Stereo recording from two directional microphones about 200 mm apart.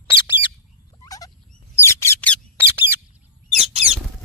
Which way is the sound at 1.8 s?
15° left (ahead or behind).